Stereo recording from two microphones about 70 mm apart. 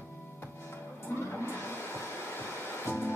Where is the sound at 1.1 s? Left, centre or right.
Left.